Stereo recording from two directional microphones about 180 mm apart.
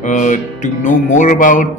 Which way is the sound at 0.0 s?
45° left (ahead or behind).